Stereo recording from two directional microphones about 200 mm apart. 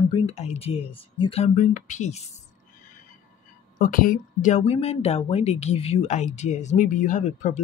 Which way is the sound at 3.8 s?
45° left (ahead or behind).